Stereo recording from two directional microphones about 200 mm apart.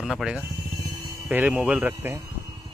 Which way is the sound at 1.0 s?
15° right (ahead or behind).